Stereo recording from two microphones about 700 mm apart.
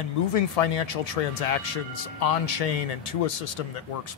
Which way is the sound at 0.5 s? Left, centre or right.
Left.